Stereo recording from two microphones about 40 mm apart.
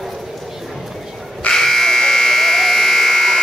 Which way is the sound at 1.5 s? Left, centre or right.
Centre.